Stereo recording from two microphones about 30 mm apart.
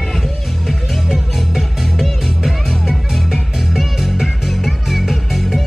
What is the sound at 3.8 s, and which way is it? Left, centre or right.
Music, centre.